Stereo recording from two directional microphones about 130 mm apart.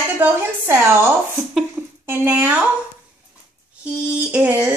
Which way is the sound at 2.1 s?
15° right (ahead or behind).